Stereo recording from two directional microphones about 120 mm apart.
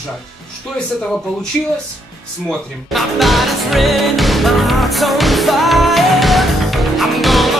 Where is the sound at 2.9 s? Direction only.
Centre (ahead or behind).